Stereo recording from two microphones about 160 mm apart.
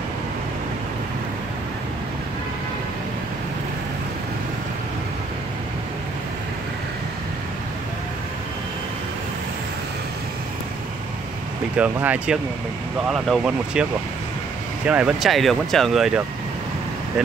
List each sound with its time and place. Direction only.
11.7 s speech: 10° right (ahead or behind)
13.4 s speech: 5° right (ahead or behind)
14.9 s speech: 5° right (ahead or behind)